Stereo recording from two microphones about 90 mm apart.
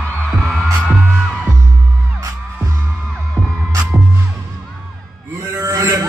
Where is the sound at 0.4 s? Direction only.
5° left (ahead or behind).